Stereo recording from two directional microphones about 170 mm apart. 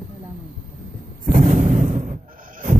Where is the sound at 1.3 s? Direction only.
45° right (ahead or behind).